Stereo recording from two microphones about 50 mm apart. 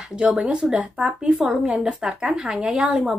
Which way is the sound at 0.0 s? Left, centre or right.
Centre.